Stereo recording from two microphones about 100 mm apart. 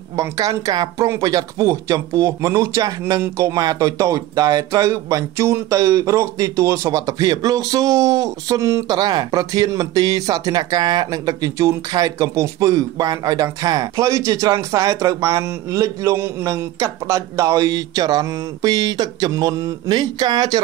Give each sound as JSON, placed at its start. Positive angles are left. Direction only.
{"t": 0.1, "sound": "speech", "side_deg": -35}